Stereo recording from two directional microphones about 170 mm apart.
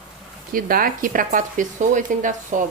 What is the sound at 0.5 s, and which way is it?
Speech, 55° right (ahead or behind).